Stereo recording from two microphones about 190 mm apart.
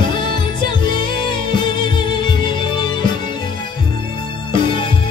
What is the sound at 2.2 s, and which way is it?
Music, 25° left (ahead or behind).